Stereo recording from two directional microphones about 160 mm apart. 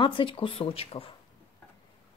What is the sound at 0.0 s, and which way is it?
Speech, 30° left (ahead or behind).